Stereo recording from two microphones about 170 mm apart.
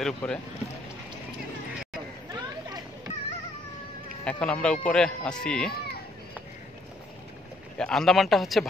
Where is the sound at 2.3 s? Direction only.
20° right (ahead or behind).